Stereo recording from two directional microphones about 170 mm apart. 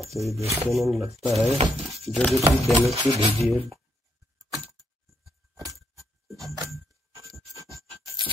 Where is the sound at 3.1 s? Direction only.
35° right (ahead or behind).